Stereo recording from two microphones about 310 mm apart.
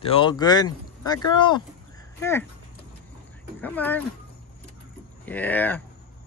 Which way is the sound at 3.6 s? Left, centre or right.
Centre.